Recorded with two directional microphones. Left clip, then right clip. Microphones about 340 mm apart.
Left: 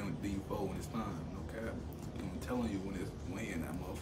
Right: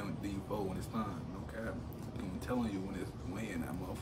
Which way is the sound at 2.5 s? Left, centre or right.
Centre.